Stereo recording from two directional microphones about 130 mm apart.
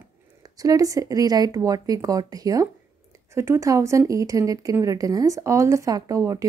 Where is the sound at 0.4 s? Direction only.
25° right (ahead or behind).